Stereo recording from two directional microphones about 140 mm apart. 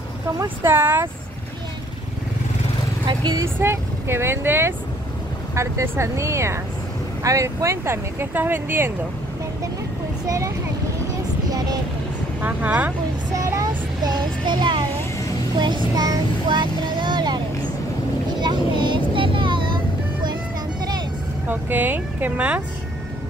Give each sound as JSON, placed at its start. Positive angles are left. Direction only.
{"t": 0.7, "sound": "speech", "side_deg": -15}
{"t": 3.1, "sound": "speech", "side_deg": -30}
{"t": 3.5, "sound": "speech", "side_deg": -15}
{"t": 10.2, "sound": "speech", "side_deg": -25}
{"t": 11.5, "sound": "vehicle", "side_deg": -30}
{"t": 12.4, "sound": "speech", "side_deg": -10}
{"t": 13.4, "sound": "child singing", "side_deg": -20}
{"t": 15.6, "sound": "speech", "side_deg": -30}
{"t": 18.4, "sound": "vehicle", "side_deg": -35}
{"t": 21.5, "sound": "speech", "side_deg": -15}